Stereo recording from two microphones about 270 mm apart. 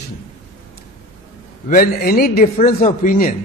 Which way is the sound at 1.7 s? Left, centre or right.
Left.